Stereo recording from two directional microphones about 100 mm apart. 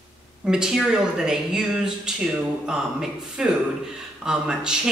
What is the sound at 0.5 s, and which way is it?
Speech, 5° right (ahead or behind).